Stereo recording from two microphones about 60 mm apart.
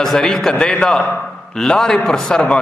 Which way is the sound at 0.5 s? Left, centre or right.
Centre.